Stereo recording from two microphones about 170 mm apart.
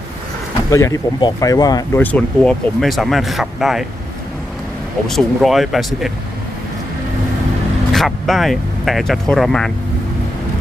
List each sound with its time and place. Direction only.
0.7 s speech: 20° left (ahead or behind)
2.0 s speech: 10° left (ahead or behind)
5.0 s speech: centre (ahead or behind)
7.9 s speech: centre (ahead or behind)